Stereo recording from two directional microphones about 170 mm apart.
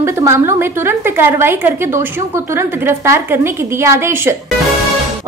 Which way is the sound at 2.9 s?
15° right (ahead or behind).